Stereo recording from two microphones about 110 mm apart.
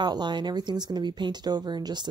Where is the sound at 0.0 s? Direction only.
40° right (ahead or behind).